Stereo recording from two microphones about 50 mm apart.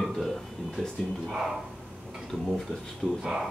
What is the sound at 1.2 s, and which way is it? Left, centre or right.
Speech, centre.